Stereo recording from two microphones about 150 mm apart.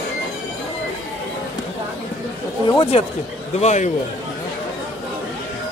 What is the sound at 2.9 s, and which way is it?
Speech, 45° left (ahead or behind).